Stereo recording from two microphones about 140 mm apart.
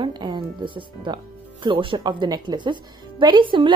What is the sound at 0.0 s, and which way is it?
A woman's voice, 30° right (ahead or behind).